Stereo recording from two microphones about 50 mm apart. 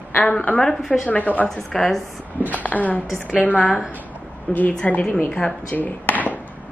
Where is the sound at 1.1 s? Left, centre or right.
Left.